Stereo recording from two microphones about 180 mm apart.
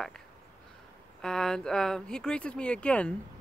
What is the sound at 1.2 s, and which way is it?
Speech, 5° left (ahead or behind).